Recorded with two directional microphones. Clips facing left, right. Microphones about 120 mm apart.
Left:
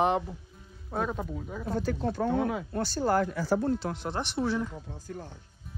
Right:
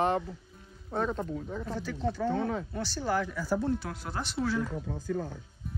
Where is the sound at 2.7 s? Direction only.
50° left (ahead or behind).